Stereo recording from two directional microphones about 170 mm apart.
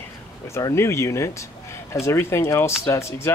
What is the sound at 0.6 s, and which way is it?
Speech, 15° left (ahead or behind).